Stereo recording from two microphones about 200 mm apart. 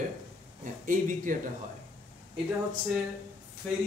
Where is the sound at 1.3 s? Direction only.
40° right (ahead or behind).